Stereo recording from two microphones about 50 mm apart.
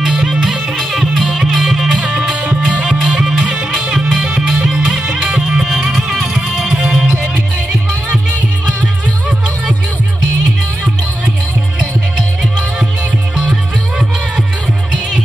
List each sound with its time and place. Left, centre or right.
0.0 s music: centre
2.4 s music: right; by 7.2 s centre
13.5 s music: centre